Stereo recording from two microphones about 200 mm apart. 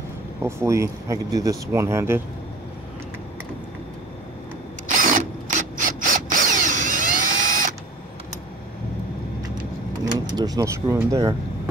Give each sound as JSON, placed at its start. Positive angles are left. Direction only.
{"t": 0.4, "sound": "speech", "side_deg": -15}
{"t": 4.8, "sound": "drill", "side_deg": -40}
{"t": 10.3, "sound": "speech", "side_deg": -20}